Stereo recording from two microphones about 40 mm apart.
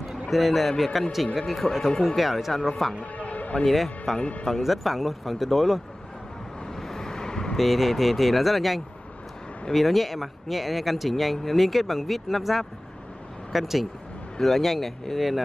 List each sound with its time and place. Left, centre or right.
0.1 s a man's voice: centre
2.1 s speech: centre
3.0 s music: left
3.6 s speech: centre
4.2 s speech: left
4.5 s speech: centre
6.7 s vehicle: centre
7.5 s speech: centre